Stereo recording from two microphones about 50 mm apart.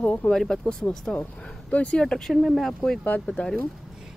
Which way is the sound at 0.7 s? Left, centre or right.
Left.